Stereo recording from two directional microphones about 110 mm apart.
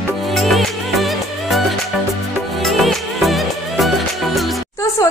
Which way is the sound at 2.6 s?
Centre (ahead or behind).